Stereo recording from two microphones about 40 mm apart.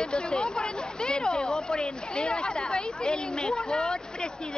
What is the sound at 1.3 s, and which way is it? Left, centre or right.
Speech, centre.